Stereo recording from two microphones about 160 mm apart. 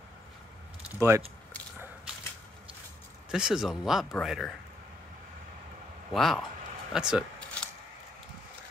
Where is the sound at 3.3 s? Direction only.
5° right (ahead or behind).